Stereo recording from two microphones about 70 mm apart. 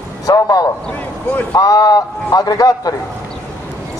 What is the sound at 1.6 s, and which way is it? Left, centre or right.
A man's voice, left.